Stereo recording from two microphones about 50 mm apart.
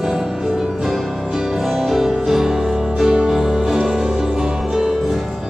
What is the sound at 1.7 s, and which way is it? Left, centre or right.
Music, centre.